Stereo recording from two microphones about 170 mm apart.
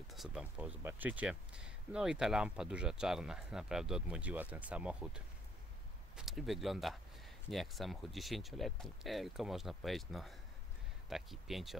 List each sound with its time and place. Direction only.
0.1 s speech: centre (ahead or behind)